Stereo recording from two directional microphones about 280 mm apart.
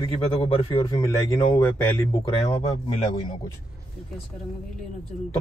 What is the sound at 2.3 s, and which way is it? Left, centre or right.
Speech, centre.